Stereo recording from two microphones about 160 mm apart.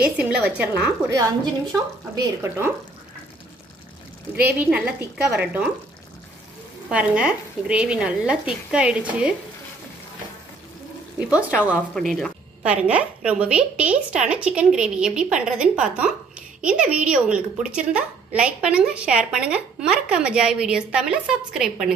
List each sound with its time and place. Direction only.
0.2 s a woman's voice: 10° right (ahead or behind)
1.1 s a woman's voice: 20° right (ahead or behind)
4.6 s a woman's voice: 10° right (ahead or behind)
6.9 s a woman's voice: 5° right (ahead or behind)
11.1 s a woman's voice: 10° right (ahead or behind)
11.9 s speech: 5° left (ahead or behind)
12.6 s a woman's voice: 10° right (ahead or behind)